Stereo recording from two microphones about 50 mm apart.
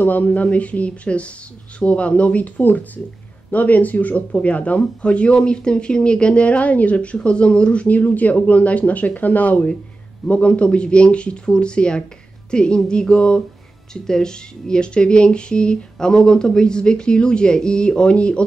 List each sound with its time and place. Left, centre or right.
0.0 s speech: left